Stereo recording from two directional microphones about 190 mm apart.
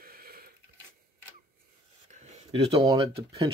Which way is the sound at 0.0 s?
50° right (ahead or behind).